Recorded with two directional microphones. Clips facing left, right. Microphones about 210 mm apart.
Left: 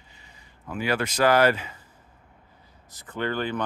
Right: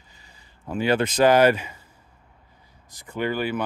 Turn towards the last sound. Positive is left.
turn(degrees=-10)  # may be behind; listen again after turning